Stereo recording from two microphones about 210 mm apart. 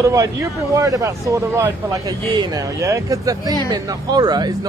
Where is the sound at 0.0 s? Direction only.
15° right (ahead or behind).